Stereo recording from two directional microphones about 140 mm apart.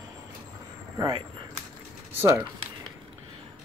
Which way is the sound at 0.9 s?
30° right (ahead or behind).